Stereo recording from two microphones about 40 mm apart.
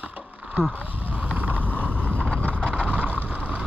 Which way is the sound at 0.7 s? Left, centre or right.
Right.